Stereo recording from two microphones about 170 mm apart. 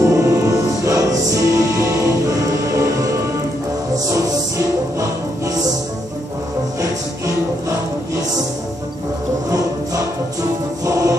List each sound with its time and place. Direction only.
0.0 s music: 20° right (ahead or behind)
9.5 s music: 20° right (ahead or behind)